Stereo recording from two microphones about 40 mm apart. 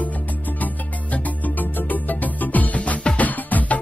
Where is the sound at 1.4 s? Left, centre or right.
Left.